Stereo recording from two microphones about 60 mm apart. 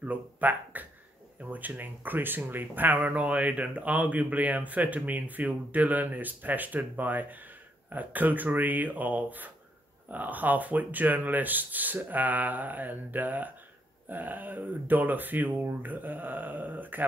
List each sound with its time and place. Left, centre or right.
0.0 s speech: right